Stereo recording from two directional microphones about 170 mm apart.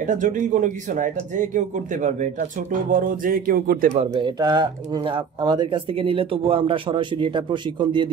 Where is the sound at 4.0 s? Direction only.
30° right (ahead or behind).